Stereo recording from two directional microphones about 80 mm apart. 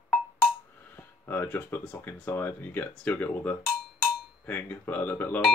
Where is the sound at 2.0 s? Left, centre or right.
Left.